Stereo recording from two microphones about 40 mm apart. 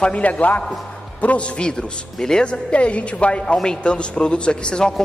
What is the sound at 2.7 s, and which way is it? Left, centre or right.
A man's voice, left.